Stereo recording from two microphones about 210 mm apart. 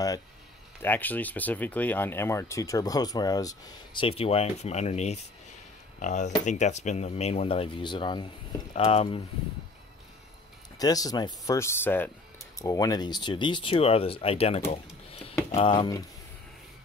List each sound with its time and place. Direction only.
0.8 s speech: 10° left (ahead or behind); by 9.2 s 30° left (ahead or behind)
10.8 s speech: 15° left (ahead or behind)
14.7 s typing: 30° left (ahead or behind)
15.5 s speech: 25° left (ahead or behind)